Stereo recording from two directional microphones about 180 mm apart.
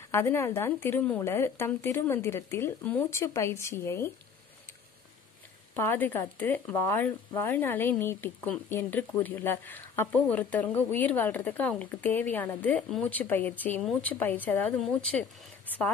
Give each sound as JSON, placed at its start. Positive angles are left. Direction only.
{"t": 0.1, "sound": "speech", "side_deg": 15}
{"t": 5.8, "sound": "speech", "side_deg": 10}